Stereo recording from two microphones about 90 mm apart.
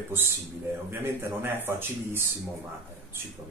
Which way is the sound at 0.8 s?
25° right (ahead or behind).